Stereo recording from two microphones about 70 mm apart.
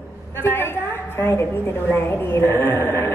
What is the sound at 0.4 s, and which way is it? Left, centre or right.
A woman's voice, left.